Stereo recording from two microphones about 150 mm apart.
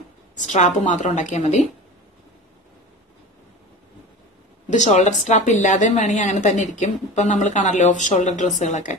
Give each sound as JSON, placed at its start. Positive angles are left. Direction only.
{"t": 0.5, "sound": "a woman's voice", "side_deg": 50}
{"t": 4.6, "sound": "a woman's voice", "side_deg": 55}